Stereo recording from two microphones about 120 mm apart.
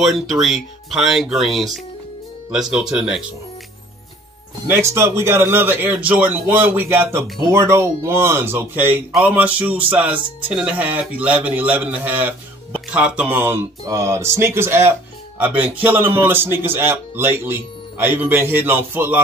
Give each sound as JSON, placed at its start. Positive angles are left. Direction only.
{"t": 0.0, "sound": "speech", "side_deg": 0}
{"t": 4.6, "sound": "speech", "side_deg": -20}